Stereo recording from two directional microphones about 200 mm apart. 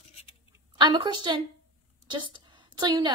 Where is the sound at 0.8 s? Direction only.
20° right (ahead or behind).